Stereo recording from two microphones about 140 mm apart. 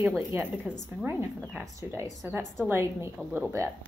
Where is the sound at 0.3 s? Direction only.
15° right (ahead or behind).